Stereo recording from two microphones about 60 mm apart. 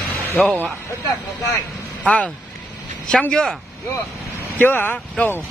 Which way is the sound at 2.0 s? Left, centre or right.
Left.